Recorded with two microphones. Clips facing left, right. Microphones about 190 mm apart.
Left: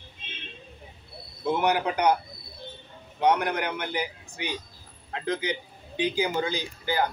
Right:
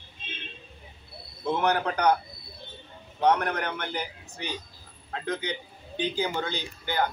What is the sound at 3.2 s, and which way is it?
Speech, 10° left (ahead or behind).